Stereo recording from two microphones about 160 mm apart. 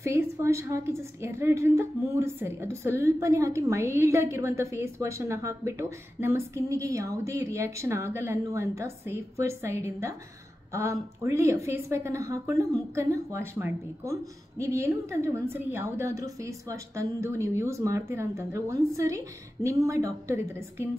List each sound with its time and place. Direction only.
0.0 s a woman's voice: 15° right (ahead or behind)